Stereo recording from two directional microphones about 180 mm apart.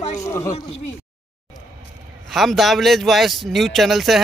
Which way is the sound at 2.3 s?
Centre (ahead or behind).